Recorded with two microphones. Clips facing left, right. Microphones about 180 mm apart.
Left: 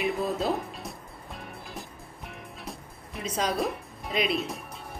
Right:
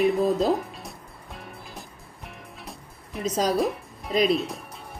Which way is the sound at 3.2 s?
Centre (ahead or behind).